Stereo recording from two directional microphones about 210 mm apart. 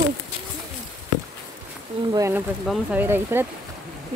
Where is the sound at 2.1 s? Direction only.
15° right (ahead or behind).